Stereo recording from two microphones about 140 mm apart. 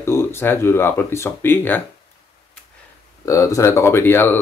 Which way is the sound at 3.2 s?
25° left (ahead or behind).